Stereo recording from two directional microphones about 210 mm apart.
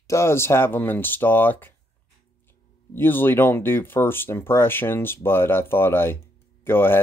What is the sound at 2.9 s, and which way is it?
Speech, 10° left (ahead or behind).